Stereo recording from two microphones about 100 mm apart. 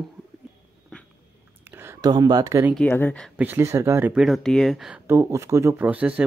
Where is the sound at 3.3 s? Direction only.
15° right (ahead or behind).